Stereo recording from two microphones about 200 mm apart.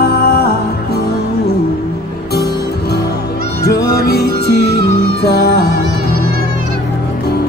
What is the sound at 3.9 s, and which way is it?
Music, 50° left (ahead or behind).